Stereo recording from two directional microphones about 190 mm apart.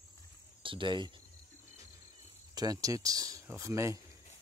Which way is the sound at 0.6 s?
25° right (ahead or behind).